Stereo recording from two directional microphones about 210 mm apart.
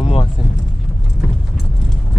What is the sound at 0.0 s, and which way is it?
Music, 30° left (ahead or behind).